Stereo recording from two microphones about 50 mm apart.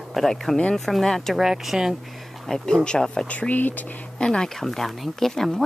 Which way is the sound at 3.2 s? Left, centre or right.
Left.